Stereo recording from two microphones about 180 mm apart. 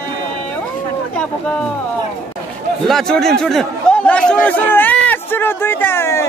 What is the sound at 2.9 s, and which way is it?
Speech, centre (ahead or behind).